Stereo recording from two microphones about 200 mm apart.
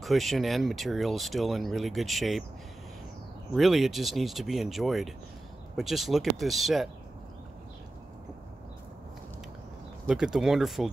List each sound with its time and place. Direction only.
0.0 s speech: centre (ahead or behind)
3.5 s speech: centre (ahead or behind)
10.0 s speech: 5° right (ahead or behind)